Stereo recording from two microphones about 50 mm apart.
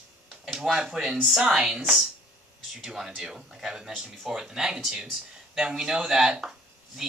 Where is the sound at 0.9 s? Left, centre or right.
Centre.